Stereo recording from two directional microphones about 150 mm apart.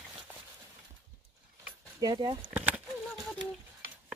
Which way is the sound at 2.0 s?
30° right (ahead or behind).